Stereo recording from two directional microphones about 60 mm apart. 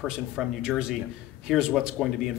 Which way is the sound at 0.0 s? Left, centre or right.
Centre.